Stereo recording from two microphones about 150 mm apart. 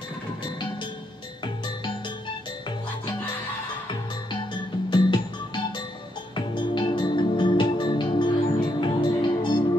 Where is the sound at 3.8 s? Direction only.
30° left (ahead or behind).